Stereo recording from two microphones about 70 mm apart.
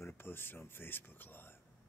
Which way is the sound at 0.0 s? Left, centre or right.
Left.